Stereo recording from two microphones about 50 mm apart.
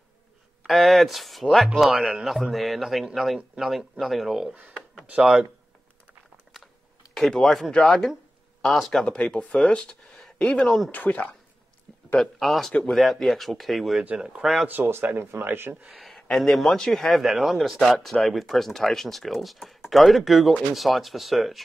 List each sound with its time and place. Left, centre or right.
0.7 s speech: centre
7.2 s speech: centre
7.7 s speech: centre
9.0 s speech: centre
9.8 s speech: centre; by 11.3 s left
12.2 s speech: centre
14.1 s speech: centre
14.4 s speech: centre
15.1 s speech: right
15.9 s speech: centre
17.1 s speech: centre